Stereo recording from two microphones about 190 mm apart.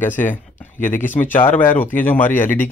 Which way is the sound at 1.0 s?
10° left (ahead or behind).